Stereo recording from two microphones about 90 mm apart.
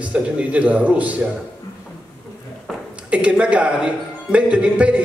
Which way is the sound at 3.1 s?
15° right (ahead or behind).